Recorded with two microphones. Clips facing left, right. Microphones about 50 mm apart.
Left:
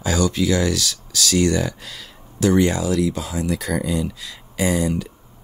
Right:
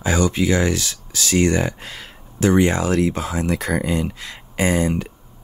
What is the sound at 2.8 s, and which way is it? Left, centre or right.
Speech, right.